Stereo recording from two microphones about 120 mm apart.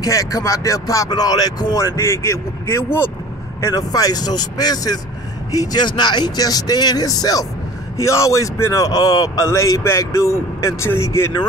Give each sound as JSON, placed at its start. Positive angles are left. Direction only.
{"t": 0.0, "sound": "a man's voice", "side_deg": 30}
{"t": 2.0, "sound": "a man's voice", "side_deg": 20}